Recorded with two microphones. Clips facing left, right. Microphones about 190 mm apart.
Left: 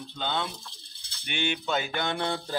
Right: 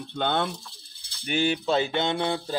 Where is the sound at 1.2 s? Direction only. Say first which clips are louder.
Right 6 dB; 35° right (ahead or behind).